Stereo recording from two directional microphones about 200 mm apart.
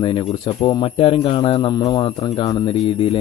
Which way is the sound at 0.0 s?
25° left (ahead or behind).